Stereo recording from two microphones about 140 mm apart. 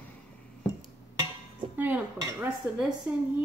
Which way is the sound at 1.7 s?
15° right (ahead or behind).